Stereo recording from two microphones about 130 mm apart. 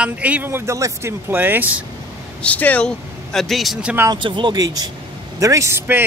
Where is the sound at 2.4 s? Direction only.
10° left (ahead or behind).